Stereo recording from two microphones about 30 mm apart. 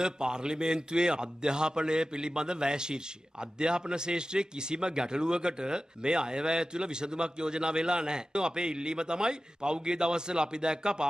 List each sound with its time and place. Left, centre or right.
0.0 s a man's voice: right